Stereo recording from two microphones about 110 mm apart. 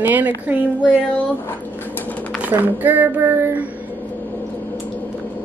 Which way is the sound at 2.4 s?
15° right (ahead or behind).